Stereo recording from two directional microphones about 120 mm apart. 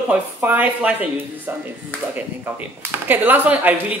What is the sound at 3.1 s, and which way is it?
Speech, 15° right (ahead or behind).